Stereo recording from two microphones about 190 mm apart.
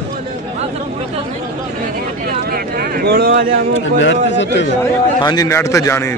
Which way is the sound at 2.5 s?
50° right (ahead or behind).